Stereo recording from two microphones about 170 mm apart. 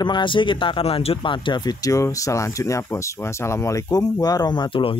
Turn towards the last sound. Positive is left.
turn(degrees=30)  # may be behind; listen again after turning